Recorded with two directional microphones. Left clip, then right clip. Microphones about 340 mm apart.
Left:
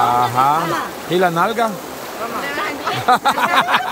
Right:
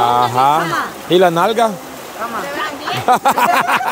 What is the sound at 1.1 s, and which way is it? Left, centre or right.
Speech, centre.